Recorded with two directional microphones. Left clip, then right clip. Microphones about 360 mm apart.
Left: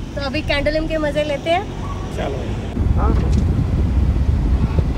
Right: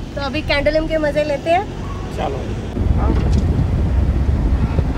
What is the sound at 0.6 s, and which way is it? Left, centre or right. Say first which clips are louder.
Speech: right 3 dB; centre.